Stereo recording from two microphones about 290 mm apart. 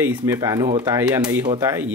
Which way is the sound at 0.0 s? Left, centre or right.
Centre.